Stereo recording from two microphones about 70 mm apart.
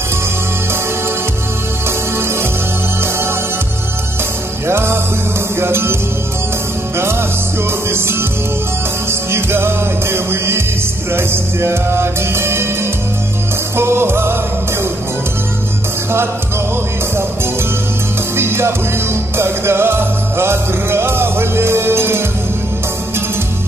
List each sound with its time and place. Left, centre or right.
1.9 s music: right
4.6 s music: right
7.0 s music: right
9.3 s music: right
13.7 s music: right
18.3 s music: right